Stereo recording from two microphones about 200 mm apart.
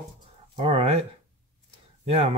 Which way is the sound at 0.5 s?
30° right (ahead or behind).